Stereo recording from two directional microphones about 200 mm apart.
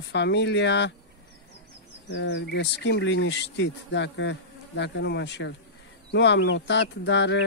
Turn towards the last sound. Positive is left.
turn(degrees=65)  # may be behind; listen again after turning